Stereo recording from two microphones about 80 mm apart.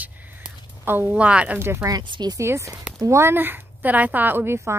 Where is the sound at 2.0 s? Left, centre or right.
Right.